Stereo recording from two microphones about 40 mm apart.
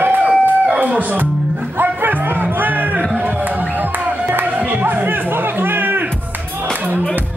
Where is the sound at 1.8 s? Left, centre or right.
Right.